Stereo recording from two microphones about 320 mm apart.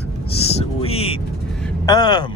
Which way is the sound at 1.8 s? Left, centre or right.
Centre.